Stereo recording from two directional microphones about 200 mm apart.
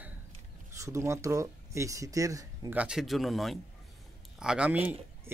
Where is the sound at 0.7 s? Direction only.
15° right (ahead or behind).